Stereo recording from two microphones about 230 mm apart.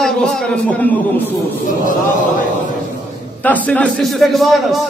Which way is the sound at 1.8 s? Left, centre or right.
Left.